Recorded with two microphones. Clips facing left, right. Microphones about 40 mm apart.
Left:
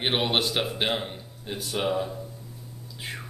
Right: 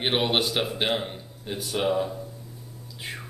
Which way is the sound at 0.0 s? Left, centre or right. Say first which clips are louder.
Right 1 dB; centre.